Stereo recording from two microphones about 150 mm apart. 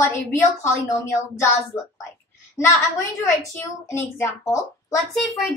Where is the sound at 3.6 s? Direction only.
20° left (ahead or behind).